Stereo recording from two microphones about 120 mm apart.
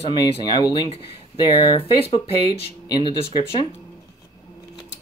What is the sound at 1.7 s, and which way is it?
Speech, 55° left (ahead or behind).